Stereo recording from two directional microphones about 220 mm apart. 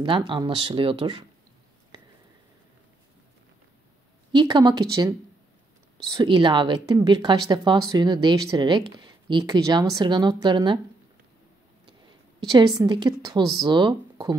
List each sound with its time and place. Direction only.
0.0 s speech: 20° right (ahead or behind)
4.3 s speech: 20° right (ahead or behind)
12.4 s speech: 20° right (ahead or behind)